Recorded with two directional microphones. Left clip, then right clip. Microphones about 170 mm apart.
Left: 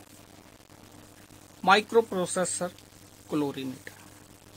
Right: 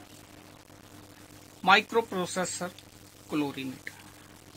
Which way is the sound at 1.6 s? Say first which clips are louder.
Left 1 dB; 35° left (ahead or behind).